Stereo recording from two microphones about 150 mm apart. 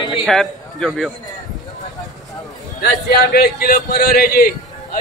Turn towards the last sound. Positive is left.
turn(degrees=70)  # may be behind; listen again after turning